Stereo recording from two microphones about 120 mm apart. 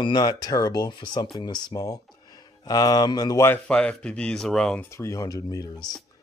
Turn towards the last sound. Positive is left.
turn(degrees=35)  # may be behind; listen again after turning